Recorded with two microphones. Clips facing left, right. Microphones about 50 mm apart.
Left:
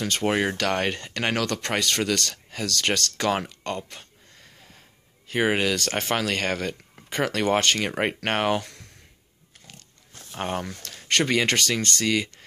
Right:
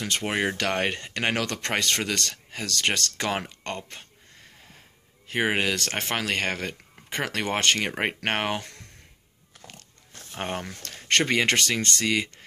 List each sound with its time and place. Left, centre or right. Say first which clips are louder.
0.0 s speech: left 3 dB; centre
1.8 s speech: left 2 dB; right
3.6 s speech: left 3 dB; right
5.3 s speech: left 2 dB; right
10.3 s speech: left 2 dB; right